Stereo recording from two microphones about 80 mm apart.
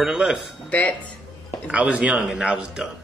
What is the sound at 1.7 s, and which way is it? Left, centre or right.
Speech, centre.